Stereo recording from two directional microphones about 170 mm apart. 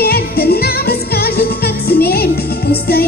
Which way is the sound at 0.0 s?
65° left (ahead or behind).